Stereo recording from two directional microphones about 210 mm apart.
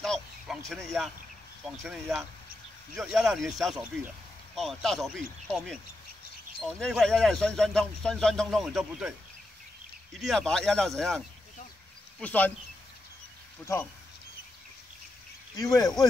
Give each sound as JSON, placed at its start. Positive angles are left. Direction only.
{"t": 0.0, "sound": "a sound", "side_deg": 0}
{"t": 0.8, "sound": "speech", "side_deg": 0}
{"t": 10.1, "sound": "speech", "side_deg": 0}
{"t": 15.5, "sound": "speech", "side_deg": 15}